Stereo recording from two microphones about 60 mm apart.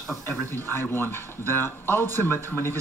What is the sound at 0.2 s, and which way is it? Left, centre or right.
A man's voice, left.